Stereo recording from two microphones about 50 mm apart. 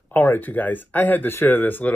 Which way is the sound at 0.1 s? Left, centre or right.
Left.